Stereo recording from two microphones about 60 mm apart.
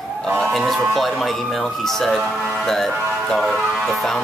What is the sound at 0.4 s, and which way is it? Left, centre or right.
Speech, centre.